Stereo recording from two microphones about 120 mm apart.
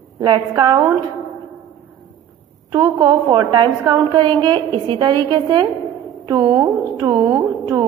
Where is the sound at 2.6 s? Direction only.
30° right (ahead or behind).